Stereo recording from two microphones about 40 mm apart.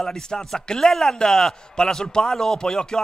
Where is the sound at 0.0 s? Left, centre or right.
Centre.